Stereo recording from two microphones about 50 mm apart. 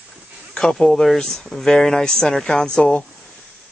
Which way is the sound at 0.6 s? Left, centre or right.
Centre.